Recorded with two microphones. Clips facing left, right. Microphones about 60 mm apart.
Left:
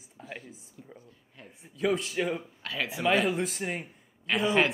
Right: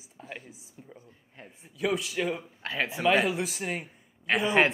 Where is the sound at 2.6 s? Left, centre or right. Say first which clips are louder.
Right 4 dB; right.